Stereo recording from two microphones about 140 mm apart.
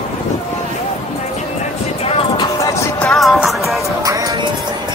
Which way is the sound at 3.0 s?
Centre (ahead or behind).